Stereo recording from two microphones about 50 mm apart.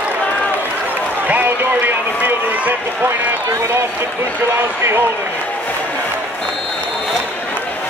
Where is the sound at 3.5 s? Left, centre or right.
Right.